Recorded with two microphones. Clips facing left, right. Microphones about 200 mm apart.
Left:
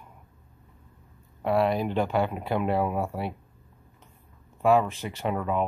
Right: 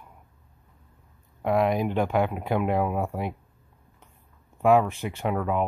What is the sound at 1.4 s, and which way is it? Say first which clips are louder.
Speech: right 1 dB; 15° right (ahead or behind).